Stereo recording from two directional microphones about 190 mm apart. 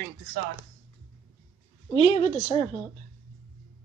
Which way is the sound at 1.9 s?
35° left (ahead or behind).